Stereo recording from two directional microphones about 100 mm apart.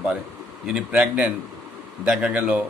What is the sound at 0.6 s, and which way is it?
A man's voice, 10° right (ahead or behind).